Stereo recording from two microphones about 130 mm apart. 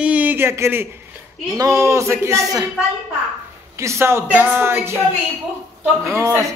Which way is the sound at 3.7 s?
20° right (ahead or behind).